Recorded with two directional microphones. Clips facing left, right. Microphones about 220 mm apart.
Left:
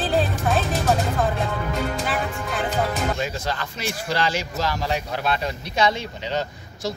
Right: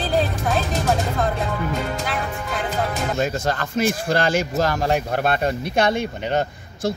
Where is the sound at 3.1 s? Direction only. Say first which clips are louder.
Right 5 dB; 50° right (ahead or behind).